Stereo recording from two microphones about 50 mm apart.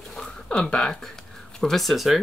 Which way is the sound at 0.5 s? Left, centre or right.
Left.